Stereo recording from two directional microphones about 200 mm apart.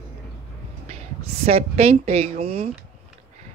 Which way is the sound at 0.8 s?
30° right (ahead or behind).